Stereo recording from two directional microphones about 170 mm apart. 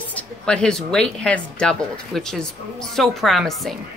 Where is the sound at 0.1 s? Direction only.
5° left (ahead or behind).